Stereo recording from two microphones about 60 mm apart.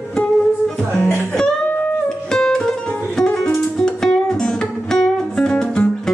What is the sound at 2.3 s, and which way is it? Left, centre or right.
Music, centre.